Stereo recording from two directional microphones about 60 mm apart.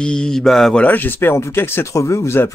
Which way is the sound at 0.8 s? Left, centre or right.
Left.